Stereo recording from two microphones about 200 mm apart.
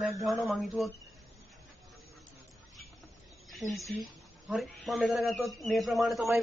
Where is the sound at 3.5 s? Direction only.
Centre (ahead or behind).